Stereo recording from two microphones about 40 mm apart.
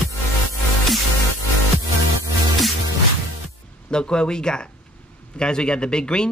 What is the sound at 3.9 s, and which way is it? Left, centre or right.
Speech, left.